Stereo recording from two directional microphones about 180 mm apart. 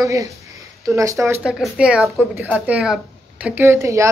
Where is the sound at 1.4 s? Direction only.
5° right (ahead or behind).